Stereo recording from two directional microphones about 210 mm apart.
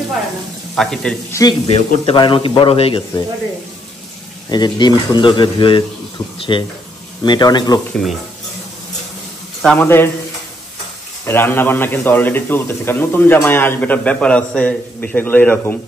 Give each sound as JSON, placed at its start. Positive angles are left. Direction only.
{"t": 0.7, "sound": "a man's voice", "side_deg": 0}
{"t": 1.3, "sound": "a man's voice", "side_deg": 20}
{"t": 1.7, "sound": "speech", "side_deg": 30}
{"t": 4.5, "sound": "speech", "side_deg": 20}
{"t": 7.9, "sound": "a man's voice", "side_deg": 0}
{"t": 9.6, "sound": "a man's voice", "side_deg": 5}
{"t": 11.2, "sound": "a man's voice", "side_deg": 10}